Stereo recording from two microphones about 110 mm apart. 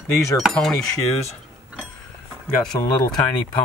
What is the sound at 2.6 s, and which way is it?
Speech, 5° left (ahead or behind).